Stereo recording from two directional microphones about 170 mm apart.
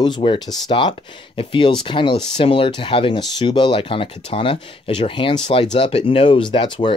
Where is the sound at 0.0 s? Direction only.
30° left (ahead or behind).